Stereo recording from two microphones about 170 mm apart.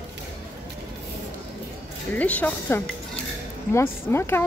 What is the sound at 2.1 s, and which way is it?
A woman's voice, 10° left (ahead or behind).